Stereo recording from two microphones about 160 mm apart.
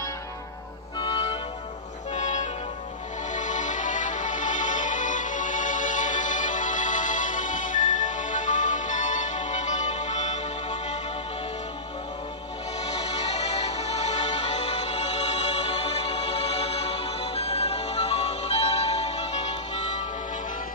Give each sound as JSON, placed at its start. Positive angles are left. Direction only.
{"t": 0.9, "sound": "music", "side_deg": 35}
{"t": 12.8, "sound": "music", "side_deg": 40}